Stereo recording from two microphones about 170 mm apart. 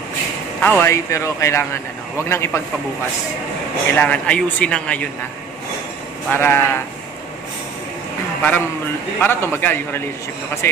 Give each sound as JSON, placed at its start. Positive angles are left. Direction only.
{"t": 0.6, "sound": "a man's voice", "side_deg": 10}
{"t": 3.9, "sound": "a man's voice", "side_deg": 5}
{"t": 6.3, "sound": "a man's voice", "side_deg": 10}
{"t": 8.4, "sound": "a man's voice", "side_deg": 10}